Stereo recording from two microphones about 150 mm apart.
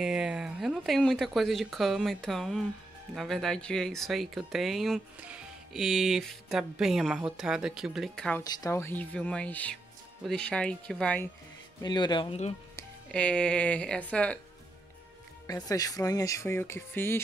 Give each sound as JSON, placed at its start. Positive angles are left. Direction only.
{"t": 0.0, "sound": "speech", "side_deg": -5}
{"t": 8.5, "sound": "speech", "side_deg": 20}
{"t": 11.8, "sound": "speech", "side_deg": 30}
{"t": 13.1, "sound": "speech", "side_deg": 5}
{"t": 15.4, "sound": "speech", "side_deg": 25}